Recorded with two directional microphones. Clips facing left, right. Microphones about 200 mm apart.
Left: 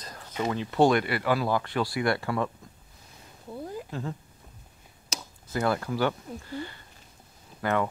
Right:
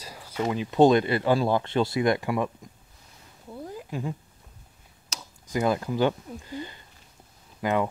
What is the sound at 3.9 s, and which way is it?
Speech, 15° right (ahead or behind).